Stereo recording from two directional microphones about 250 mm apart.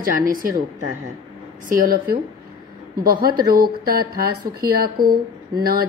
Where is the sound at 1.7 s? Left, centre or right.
Right.